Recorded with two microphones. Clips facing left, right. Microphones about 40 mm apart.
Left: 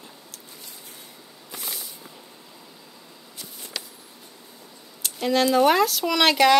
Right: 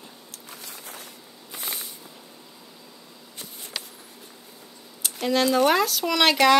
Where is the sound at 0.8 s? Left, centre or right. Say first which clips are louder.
Right 4 dB; right.